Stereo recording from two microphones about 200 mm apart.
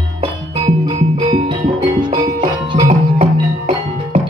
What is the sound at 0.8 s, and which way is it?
Music, 25° right (ahead or behind).